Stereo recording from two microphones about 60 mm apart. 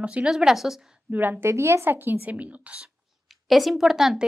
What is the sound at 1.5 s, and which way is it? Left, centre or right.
Speech, right.